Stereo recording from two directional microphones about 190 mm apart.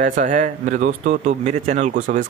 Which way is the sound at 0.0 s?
40° right (ahead or behind).